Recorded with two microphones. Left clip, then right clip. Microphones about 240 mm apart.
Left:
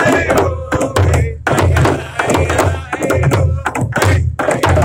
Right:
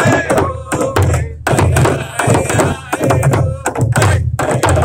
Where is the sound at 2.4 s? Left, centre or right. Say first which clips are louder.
Even; right.